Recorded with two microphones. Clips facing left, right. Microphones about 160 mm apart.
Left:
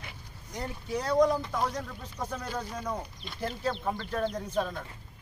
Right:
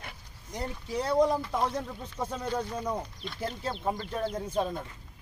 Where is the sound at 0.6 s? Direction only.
25° right (ahead or behind).